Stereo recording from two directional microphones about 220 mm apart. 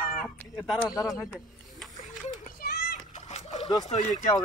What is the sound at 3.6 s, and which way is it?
Speech, 15° left (ahead or behind).